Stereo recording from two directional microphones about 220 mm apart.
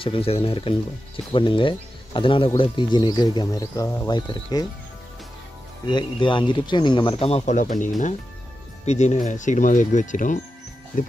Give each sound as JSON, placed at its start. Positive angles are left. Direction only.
{"t": 0.0, "sound": "speech", "side_deg": 25}
{"t": 5.9, "sound": "speech", "side_deg": 20}